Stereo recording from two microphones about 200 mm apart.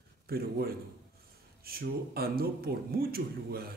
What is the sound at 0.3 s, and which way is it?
Speech, 50° right (ahead or behind).